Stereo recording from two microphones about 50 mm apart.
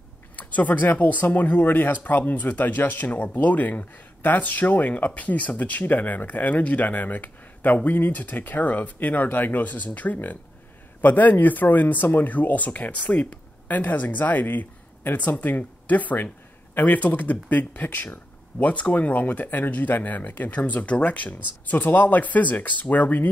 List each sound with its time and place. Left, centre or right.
0.4 s speech: left